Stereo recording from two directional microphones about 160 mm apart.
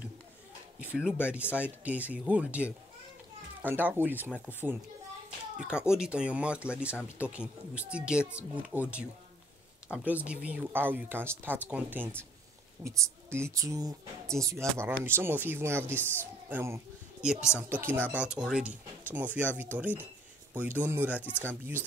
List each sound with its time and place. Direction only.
0.7 s a sound: 5° right (ahead or behind)
1.6 s speech: 10° right (ahead or behind)
5.6 s speech: 5° right (ahead or behind)
21.2 s speech: 10° left (ahead or behind)